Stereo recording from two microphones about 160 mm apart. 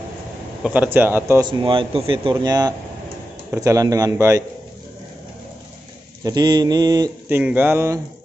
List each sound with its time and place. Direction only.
0.7 s speech: 10° right (ahead or behind)
1.4 s a man's voice: 30° right (ahead or behind)
6.2 s a man's voice: 25° right (ahead or behind)
7.2 s speech: 10° right (ahead or behind)